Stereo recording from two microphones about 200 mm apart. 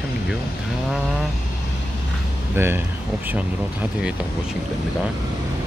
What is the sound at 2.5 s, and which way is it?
Speech, 10° right (ahead or behind).